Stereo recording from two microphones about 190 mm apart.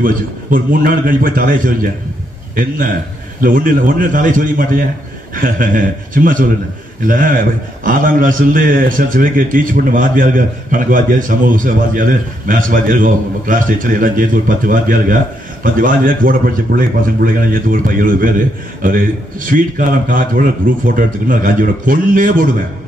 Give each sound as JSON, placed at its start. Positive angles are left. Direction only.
{"t": 0.0, "sound": "a man's voice", "side_deg": -45}